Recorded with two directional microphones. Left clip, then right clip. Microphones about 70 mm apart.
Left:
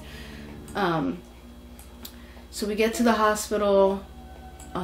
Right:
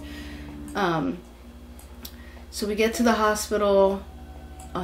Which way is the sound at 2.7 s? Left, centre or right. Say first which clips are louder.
Right 1 dB; centre.